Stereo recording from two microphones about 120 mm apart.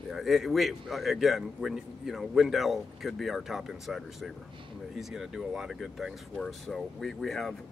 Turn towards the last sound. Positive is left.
turn(degrees=5)  # may be behind; listen again after turning